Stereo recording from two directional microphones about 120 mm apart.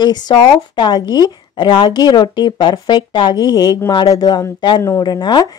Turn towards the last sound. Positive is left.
turn(degrees=35)  # may be behind; listen again after turning